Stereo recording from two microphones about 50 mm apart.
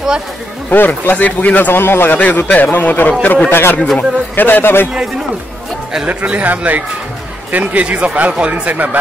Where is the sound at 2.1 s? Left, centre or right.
Left.